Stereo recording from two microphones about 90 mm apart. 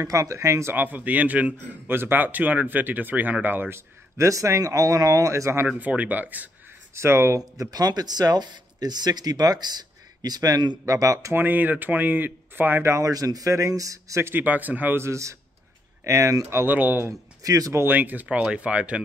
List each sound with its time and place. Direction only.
0.0 s speech: 40° right (ahead or behind)
0.7 s a man's voice: 20° right (ahead or behind)
5.7 s speech: 15° right (ahead or behind)
7.0 s speech: 30° right (ahead or behind)
11.3 s a man's voice: 20° right (ahead or behind)
12.9 s speech: 40° right (ahead or behind)
14.3 s a man's voice: 20° right (ahead or behind)
17.4 s speech: 40° right (ahead or behind)
17.8 s speech: 20° right (ahead or behind)